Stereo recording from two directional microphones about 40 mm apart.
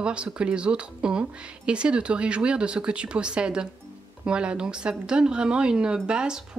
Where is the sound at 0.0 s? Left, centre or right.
Right.